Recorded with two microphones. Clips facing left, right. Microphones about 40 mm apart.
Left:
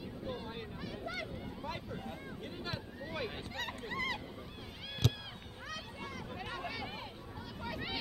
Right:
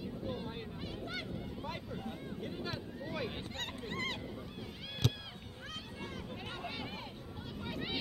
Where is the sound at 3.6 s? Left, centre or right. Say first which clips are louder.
Left 2 dB; right.